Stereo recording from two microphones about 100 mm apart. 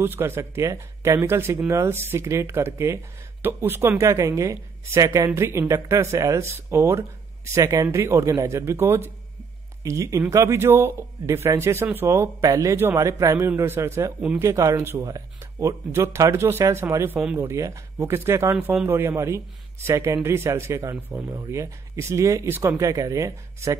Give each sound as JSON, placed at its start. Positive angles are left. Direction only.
{"t": 0.0, "sound": "a woman's voice", "side_deg": -25}
{"t": 18.5, "sound": "a woman's voice", "side_deg": -15}